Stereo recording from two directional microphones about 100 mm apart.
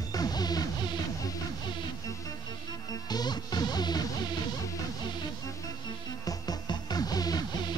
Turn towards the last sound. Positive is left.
turn(degrees=45)  # may be behind; listen again after turning